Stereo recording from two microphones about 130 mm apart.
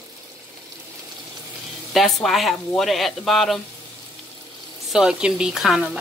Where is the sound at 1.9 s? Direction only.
Centre (ahead or behind).